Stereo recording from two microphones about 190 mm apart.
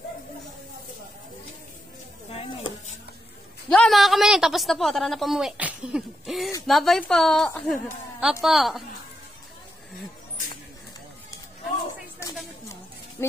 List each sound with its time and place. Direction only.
2.3 s a sound: 30° left (ahead or behind)
3.7 s a woman's voice: centre (ahead or behind)
13.2 s speech: 15° left (ahead or behind)